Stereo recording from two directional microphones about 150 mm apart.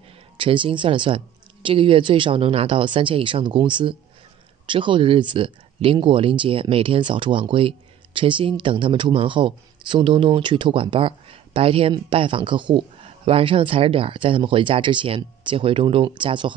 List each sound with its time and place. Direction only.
0.4 s speech: 35° right (ahead or behind)